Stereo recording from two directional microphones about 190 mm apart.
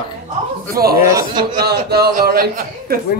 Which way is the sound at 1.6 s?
55° right (ahead or behind).